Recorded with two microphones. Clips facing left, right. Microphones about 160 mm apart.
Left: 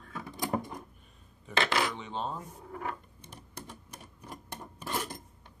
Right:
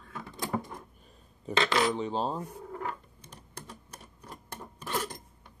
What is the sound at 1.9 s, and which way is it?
Speech, 35° right (ahead or behind).